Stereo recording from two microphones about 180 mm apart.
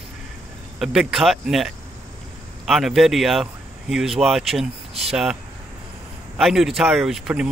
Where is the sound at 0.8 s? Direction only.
Centre (ahead or behind).